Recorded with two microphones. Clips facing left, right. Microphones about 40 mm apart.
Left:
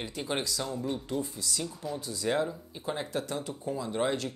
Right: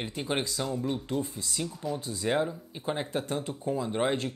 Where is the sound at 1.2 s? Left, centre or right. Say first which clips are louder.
Right 1 dB; right.